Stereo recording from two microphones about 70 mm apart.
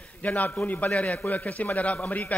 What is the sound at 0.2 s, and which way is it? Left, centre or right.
A man's voice, left.